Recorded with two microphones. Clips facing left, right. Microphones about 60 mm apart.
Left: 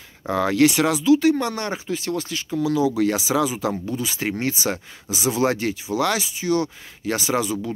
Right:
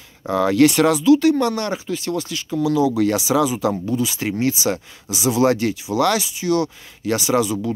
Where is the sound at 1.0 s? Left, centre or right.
Left.